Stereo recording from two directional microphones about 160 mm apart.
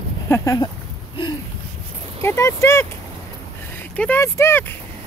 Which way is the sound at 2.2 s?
15° left (ahead or behind).